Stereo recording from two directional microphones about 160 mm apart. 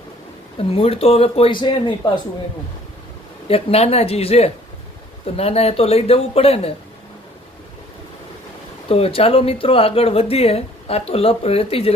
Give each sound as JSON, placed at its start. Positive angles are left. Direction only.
{"t": 0.6, "sound": "speech", "side_deg": 35}
{"t": 3.4, "sound": "speech", "side_deg": 40}
{"t": 8.8, "sound": "speech", "side_deg": 35}